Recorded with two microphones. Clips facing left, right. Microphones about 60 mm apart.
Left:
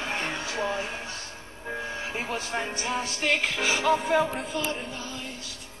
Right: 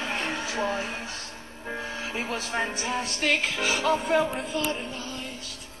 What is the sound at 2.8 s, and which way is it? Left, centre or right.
Speech, centre.